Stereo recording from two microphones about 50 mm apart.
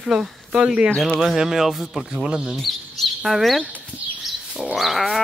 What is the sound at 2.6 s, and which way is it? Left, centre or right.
Bird, centre.